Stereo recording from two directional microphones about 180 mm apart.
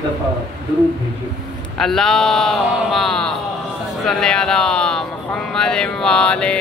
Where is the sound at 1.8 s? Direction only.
Centre (ahead or behind).